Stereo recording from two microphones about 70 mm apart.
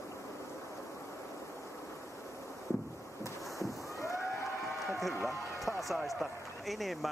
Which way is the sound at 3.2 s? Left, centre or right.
Left.